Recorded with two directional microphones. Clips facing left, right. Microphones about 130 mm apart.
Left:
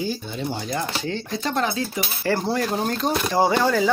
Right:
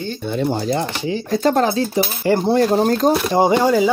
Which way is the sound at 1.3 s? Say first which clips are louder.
Right 9 dB; 45° right (ahead or behind).